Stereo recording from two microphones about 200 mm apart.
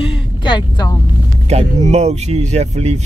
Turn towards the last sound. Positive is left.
turn(degrees=-30)  # may be behind; listen again after turning